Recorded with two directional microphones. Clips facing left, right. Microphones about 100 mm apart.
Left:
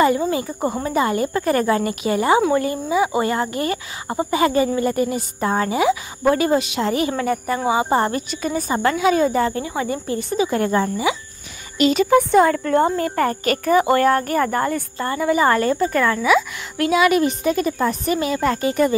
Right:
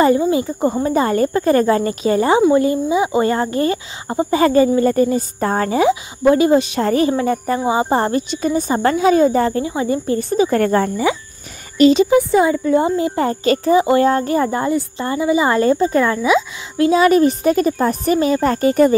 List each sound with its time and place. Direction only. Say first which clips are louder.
0.3 s speech: right 5 dB; 25° right (ahead or behind)
0.8 s speech: right 3 dB; 35° right (ahead or behind)
4.3 s speech: right 5 dB; 35° right (ahead or behind)
7.1 s speech: right 4 dB; 30° right (ahead or behind)
10.1 s speech: right 4 dB; 40° right (ahead or behind)
11.8 s speech: right 6 dB; 30° right (ahead or behind)
12.3 s speech: right 1 dB; 10° right (ahead or behind); by 18.9 s 40° right (ahead or behind)